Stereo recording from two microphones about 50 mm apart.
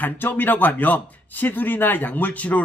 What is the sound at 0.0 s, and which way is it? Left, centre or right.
Speech, left.